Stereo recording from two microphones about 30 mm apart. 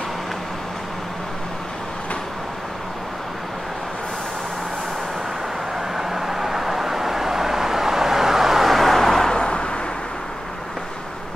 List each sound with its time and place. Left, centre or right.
5.9 s vehicle: centre
8.6 s vehicle: centre
9.3 s vehicle: left